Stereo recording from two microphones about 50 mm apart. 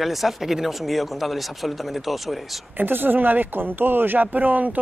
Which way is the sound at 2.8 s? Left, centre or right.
Right.